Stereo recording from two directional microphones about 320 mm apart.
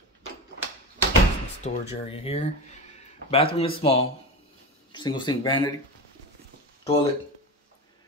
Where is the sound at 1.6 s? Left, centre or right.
Centre.